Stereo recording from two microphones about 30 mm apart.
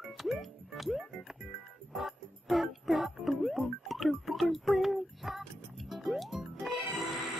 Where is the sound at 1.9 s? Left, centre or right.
Centre.